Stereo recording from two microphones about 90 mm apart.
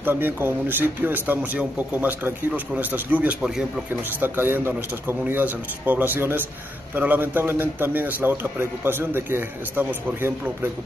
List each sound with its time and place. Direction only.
0.0 s a man's voice: 25° right (ahead or behind)